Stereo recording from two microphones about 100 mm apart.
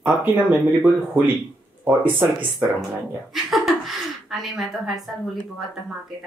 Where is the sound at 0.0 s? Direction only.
15° right (ahead or behind).